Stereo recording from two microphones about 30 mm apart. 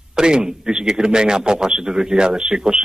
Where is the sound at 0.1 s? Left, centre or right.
Right.